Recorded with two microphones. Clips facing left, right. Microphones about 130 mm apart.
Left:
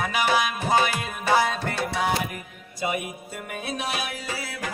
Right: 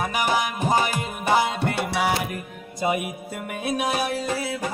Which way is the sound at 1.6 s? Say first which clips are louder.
Right 3 dB; 65° right (ahead or behind).